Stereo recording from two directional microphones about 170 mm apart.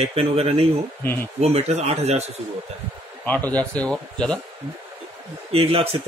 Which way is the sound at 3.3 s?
10° left (ahead or behind).